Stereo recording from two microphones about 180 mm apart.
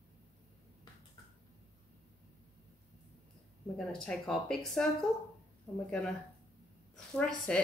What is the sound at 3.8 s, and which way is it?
Speech, 5° left (ahead or behind).